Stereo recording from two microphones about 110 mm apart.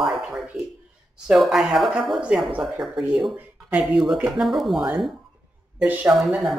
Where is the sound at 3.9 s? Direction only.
5° right (ahead or behind).